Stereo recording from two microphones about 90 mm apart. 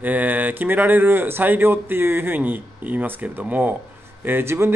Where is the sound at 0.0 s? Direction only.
20° right (ahead or behind).